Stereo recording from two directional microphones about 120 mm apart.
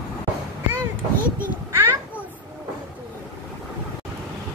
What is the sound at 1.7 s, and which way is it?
Children playing, 20° right (ahead or behind).